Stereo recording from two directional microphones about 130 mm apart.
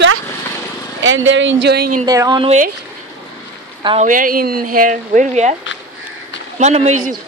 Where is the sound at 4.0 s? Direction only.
90° right; by 5.5 s 75° right (ahead or behind).